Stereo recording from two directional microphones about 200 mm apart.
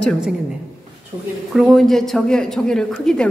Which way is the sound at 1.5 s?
Centre (ahead or behind).